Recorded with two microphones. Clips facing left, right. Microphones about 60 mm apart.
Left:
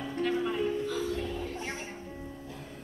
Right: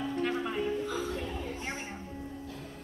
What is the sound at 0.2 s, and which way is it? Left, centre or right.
Music, centre.